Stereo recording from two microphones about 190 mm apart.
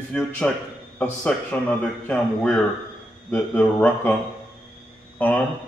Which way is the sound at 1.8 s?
5° left (ahead or behind).